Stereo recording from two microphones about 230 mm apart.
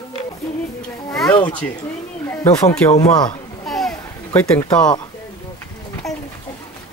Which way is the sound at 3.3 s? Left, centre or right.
Centre.